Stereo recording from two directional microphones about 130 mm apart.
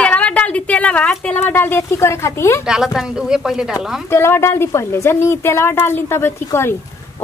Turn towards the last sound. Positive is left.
turn(degrees=20)  # may be behind; listen again after turning